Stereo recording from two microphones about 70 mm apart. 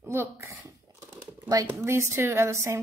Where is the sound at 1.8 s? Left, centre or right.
Right.